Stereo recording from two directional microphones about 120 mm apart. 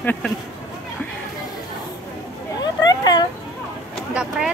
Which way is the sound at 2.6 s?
35° left (ahead or behind).